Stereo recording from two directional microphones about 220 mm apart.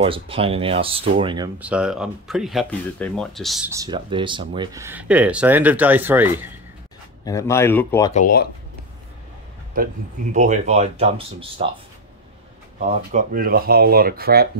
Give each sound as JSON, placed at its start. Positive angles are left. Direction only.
{"t": 0.0, "sound": "speech", "side_deg": -25}
{"t": 1.6, "sound": "speech", "side_deg": -5}
{"t": 3.7, "sound": "speech", "side_deg": -20}
{"t": 7.2, "sound": "speech", "side_deg": 15}
{"t": 8.1, "sound": "speech", "side_deg": 40}
{"t": 10.3, "sound": "speech", "side_deg": -35}
{"t": 12.7, "sound": "speech", "side_deg": -40}